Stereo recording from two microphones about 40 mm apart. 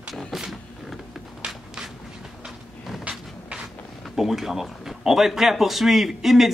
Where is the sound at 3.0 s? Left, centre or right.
Right.